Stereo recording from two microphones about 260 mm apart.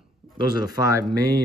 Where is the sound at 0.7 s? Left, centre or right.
Centre.